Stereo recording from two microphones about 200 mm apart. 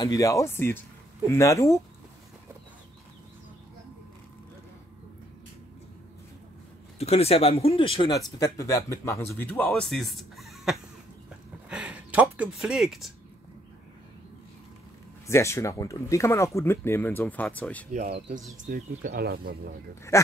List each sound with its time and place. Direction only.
0.0 s speech: 15° left (ahead or behind)
7.0 s speech: 30° left (ahead or behind); by 10.8 s centre (ahead or behind)
11.7 s a sound: 5° right (ahead or behind)
15.2 s speech: 15° left (ahead or behind)
17.9 s speech: 40° right (ahead or behind)